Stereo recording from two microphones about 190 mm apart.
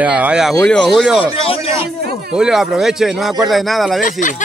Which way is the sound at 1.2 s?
30° left (ahead or behind).